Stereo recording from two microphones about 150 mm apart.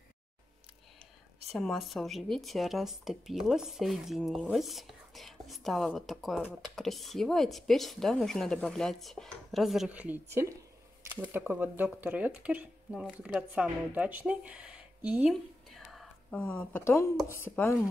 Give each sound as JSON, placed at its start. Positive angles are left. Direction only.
{"t": 1.5, "sound": "speech", "side_deg": 0}
{"t": 15.3, "sound": "a sound", "side_deg": 0}
{"t": 17.3, "sound": "speech", "side_deg": 15}